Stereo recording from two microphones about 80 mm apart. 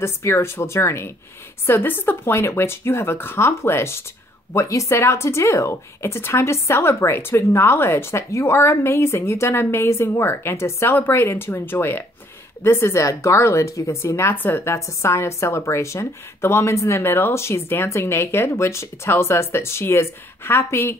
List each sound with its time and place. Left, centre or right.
0.0 s speech: left